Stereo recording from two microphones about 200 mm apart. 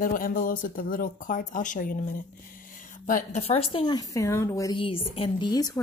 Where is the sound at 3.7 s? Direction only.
20° left (ahead or behind).